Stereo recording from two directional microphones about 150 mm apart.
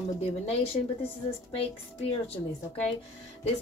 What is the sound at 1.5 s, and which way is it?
Speech, 40° left (ahead or behind).